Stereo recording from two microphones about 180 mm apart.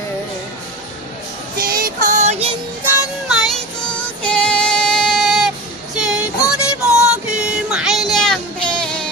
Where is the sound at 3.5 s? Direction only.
5° left (ahead or behind).